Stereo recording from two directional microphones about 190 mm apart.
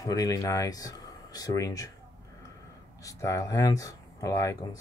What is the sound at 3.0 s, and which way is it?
Speech, 15° left (ahead or behind).